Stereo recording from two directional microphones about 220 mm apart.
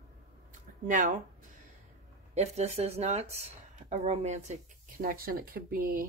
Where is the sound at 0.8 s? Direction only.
40° right (ahead or behind).